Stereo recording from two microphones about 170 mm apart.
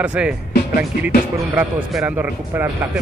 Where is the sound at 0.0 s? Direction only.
5° right (ahead or behind).